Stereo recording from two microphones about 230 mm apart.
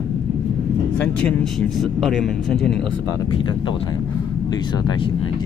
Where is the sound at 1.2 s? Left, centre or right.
Centre.